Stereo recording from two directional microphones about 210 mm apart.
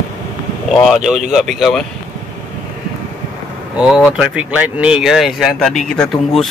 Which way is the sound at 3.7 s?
Centre (ahead or behind).